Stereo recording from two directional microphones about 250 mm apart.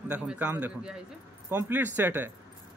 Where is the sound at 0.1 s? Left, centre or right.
Centre.